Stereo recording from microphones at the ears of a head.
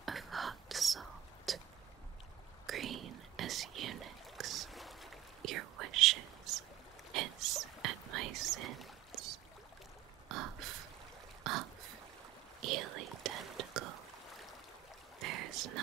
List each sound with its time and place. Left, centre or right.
0.5 s whispering: right
2.6 s whispering: right
10.2 s a sound: right
12.5 s whispering: right
15.1 s boat: right